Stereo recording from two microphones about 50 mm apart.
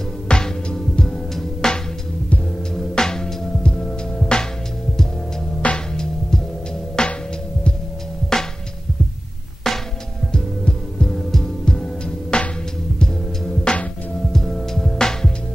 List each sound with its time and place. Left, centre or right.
0.3 s music: centre
5.6 s music: left
7.0 s music: centre
8.3 s music: centre
9.6 s music: centre
10.3 s heart sounds: centre
12.3 s music: centre